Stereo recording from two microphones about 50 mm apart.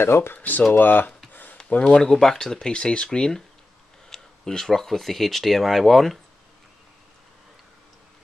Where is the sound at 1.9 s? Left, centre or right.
Centre.